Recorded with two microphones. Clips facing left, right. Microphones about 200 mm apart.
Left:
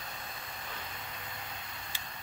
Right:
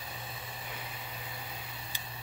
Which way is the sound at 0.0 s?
5° right (ahead or behind).